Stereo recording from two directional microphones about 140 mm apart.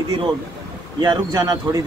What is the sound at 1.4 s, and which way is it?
Speech, 25° right (ahead or behind).